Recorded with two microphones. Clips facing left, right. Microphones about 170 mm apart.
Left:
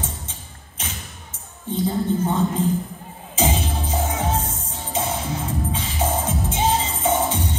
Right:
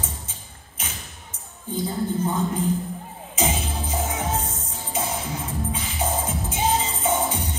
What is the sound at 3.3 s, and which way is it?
Music, 30° left (ahead or behind).